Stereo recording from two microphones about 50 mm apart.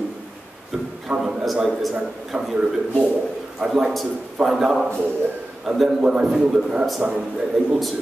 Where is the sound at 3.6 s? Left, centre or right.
Centre.